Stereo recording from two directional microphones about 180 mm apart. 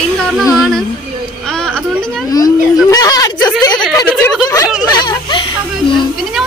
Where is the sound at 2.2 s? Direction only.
20° left (ahead or behind).